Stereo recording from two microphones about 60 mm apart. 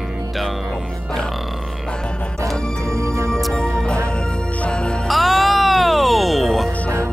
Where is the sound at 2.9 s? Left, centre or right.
Right.